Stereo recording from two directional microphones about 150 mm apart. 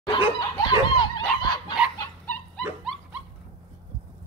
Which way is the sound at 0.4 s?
30° left (ahead or behind).